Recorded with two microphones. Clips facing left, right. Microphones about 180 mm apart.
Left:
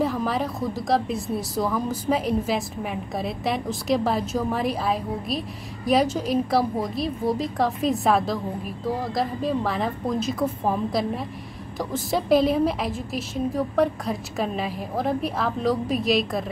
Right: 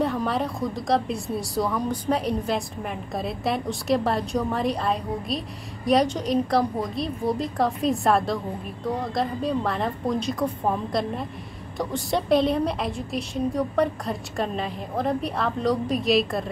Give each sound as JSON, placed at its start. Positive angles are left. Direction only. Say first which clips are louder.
{"t": 0.0, "sound": "a woman's voice", "louder": "even", "side_deg": 0}